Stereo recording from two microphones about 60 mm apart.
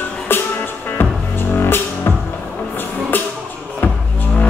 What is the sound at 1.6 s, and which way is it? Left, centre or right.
Music, left.